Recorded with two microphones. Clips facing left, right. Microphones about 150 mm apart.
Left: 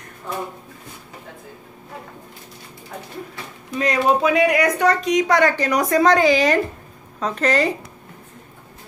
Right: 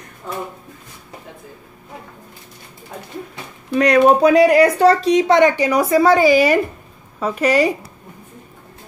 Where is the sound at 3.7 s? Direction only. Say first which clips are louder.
Right 7 dB; 65° right (ahead or behind).